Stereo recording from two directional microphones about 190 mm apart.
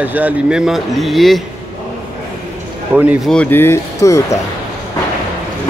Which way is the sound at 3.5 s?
15° left (ahead or behind).